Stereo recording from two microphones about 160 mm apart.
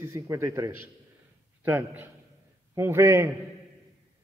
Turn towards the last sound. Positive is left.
turn(degrees=-20)  # may be behind; listen again after turning